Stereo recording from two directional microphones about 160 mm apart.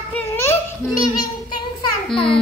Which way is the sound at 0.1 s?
15° left (ahead or behind).